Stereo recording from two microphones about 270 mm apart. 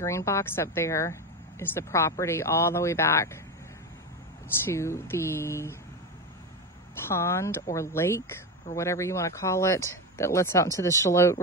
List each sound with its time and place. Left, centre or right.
0.0 s speech: centre
4.6 s speech: centre
7.1 s speech: centre